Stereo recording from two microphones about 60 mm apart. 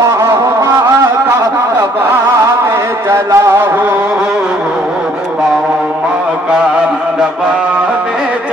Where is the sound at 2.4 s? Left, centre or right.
Right.